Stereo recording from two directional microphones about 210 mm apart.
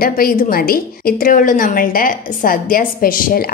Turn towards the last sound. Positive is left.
turn(degrees=45)  # may be behind; listen again after turning